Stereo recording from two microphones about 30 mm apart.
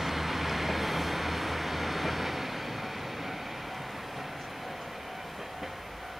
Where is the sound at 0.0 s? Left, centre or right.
Centre.